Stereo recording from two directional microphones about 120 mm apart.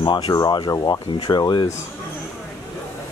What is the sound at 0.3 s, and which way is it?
Speech, 35° left (ahead or behind).